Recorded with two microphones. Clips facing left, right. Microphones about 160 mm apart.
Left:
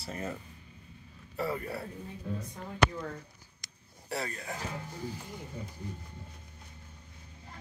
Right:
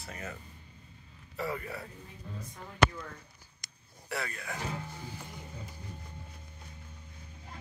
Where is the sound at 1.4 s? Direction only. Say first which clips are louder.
Left 2 dB; 35° left (ahead or behind).